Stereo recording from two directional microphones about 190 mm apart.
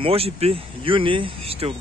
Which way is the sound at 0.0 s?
30° right (ahead or behind).